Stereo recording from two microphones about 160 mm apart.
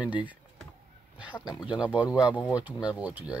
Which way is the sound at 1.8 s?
10° right (ahead or behind).